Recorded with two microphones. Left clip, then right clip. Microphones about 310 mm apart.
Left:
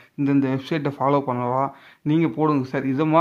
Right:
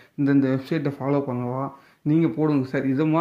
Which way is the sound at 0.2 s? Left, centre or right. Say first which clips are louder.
Even; centre.